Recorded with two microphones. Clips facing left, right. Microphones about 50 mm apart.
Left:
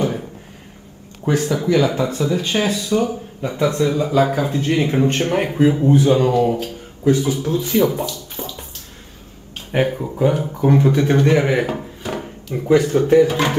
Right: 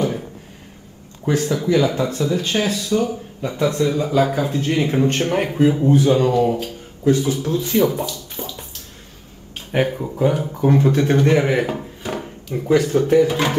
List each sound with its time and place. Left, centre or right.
0.0 s a sound: centre
1.2 s speech: centre
3.9 s speech: centre
4.5 s a man's voice: centre
4.7 s speech: centre
5.0 s a man's voice: centre
5.3 s speech: centre
6.2 s speech: centre
7.1 s speech: centre
7.9 s speech: centre
9.7 s speech: centre